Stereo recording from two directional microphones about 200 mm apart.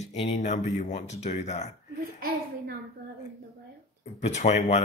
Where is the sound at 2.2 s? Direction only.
50° right (ahead or behind).